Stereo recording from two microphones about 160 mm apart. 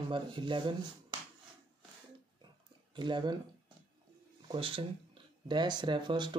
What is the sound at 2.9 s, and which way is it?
Speech, 30° right (ahead or behind).